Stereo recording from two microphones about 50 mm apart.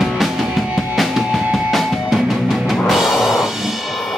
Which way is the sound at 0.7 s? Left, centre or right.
Centre.